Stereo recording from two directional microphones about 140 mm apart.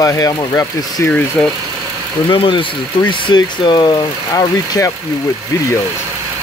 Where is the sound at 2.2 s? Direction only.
35° left (ahead or behind).